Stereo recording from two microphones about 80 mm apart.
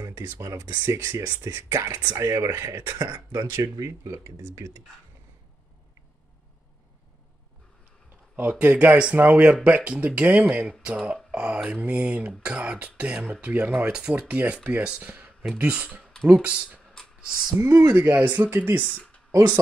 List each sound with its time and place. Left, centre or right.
0.0 s speech: right
8.4 s speech: centre
17.6 s speech: right
17.9 s speech: right